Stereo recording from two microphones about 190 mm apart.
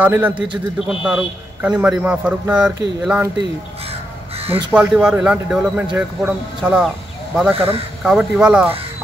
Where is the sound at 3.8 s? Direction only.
30° right (ahead or behind).